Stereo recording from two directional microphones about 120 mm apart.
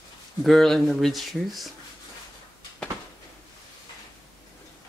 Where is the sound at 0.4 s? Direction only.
Centre (ahead or behind).